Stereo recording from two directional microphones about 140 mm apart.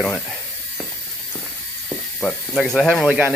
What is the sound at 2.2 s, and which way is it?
Speech, 5° left (ahead or behind).